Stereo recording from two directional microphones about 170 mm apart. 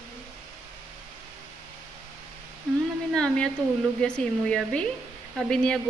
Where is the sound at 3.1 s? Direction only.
5° left (ahead or behind).